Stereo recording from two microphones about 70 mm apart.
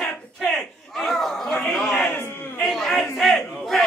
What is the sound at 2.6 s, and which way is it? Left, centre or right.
Speech, centre.